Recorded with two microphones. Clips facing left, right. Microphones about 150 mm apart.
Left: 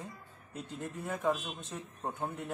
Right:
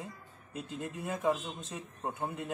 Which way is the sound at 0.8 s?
10° right (ahead or behind).